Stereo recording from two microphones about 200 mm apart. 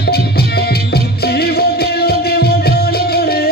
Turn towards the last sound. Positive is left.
turn(degrees=50)  # may be behind; listen again after turning